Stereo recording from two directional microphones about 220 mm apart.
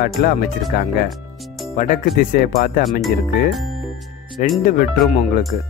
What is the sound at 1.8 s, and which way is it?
Speech, 40° left (ahead or behind).